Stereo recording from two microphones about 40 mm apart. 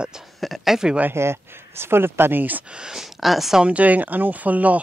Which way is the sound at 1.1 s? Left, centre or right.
Right.